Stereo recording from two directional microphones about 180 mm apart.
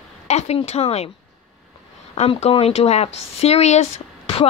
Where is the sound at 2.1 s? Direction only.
35° left (ahead or behind).